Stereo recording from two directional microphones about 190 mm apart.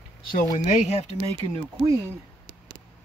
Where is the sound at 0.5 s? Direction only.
40° left (ahead or behind).